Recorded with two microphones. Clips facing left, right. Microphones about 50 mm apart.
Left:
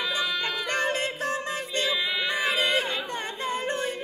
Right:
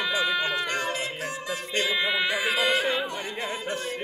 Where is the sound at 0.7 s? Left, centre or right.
Left.